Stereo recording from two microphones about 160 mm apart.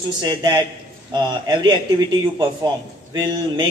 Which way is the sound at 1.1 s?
30° right (ahead or behind).